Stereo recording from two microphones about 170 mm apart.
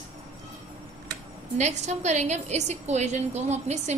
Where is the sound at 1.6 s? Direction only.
45° right (ahead or behind).